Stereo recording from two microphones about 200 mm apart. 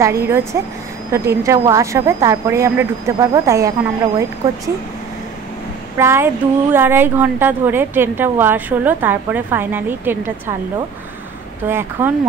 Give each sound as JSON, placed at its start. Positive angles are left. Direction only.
{"t": 0.0, "sound": "a woman's voice", "side_deg": -15}
{"t": 5.9, "sound": "a woman's voice", "side_deg": -10}
{"t": 11.6, "sound": "a woman's voice", "side_deg": -10}